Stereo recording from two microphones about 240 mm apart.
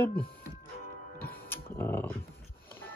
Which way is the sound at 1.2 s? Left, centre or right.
Centre.